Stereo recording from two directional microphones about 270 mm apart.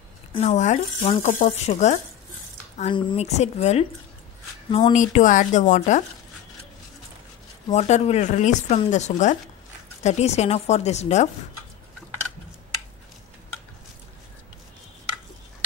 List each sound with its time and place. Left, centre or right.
0.3 s speech: left
7.7 s speech: left